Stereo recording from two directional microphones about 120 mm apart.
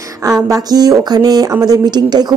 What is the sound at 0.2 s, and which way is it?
Speech, 30° right (ahead or behind).